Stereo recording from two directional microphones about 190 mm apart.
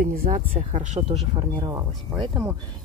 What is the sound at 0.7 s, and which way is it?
Speech, 35° right (ahead or behind).